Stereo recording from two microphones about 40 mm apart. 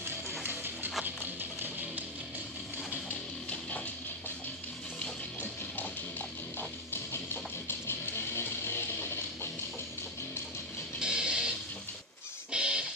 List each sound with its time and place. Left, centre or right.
0.4 s music: right
3.4 s music: left
5.4 s music: left
7.6 s music: left
11.0 s a sound: centre
12.4 s music: right